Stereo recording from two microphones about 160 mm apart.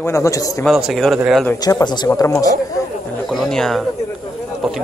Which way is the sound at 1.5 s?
25° left (ahead or behind).